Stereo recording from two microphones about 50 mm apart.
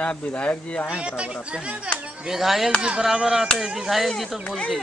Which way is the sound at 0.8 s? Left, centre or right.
Right.